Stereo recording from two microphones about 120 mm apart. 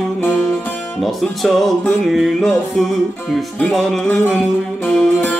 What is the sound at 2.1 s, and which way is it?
Music, centre (ahead or behind).